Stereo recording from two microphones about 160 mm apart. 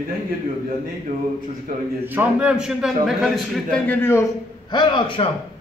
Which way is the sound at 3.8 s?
15° left (ahead or behind).